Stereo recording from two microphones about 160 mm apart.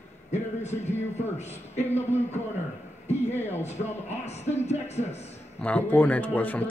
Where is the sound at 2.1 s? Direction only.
45° left (ahead or behind).